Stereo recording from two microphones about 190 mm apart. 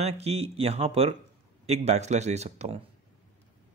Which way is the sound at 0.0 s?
35° right (ahead or behind).